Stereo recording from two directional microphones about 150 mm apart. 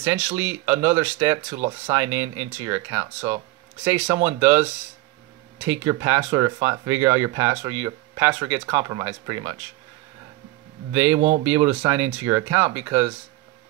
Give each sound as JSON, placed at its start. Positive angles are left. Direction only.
{"t": 0.0, "sound": "speech", "side_deg": -15}
{"t": 10.9, "sound": "speech", "side_deg": -15}